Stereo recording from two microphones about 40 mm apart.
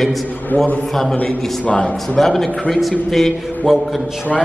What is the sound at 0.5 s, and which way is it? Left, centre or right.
Speech, left.